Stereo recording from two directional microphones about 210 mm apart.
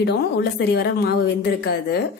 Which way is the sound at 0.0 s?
50° left (ahead or behind).